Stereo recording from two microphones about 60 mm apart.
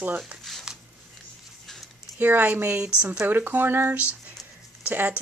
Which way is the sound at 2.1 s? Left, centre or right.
Right.